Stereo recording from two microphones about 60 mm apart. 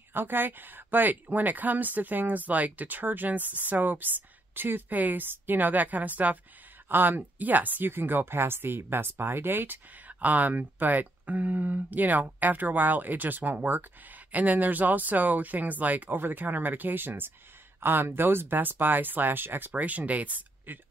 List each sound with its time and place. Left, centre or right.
0.1 s speech: right